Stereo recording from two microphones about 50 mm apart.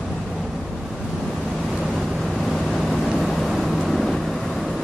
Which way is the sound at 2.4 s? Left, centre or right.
Centre.